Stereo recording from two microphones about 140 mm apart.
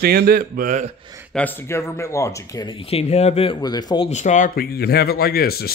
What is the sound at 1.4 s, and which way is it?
Speech, 15° left (ahead or behind).